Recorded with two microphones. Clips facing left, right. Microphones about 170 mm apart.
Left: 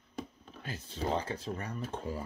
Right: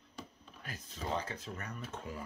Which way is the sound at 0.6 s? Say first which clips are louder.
Left 6 dB; 30° left (ahead or behind).